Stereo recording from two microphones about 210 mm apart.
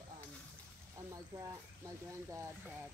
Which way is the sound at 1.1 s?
15° right (ahead or behind).